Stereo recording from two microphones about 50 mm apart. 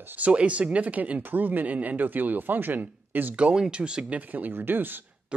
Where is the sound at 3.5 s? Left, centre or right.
Centre.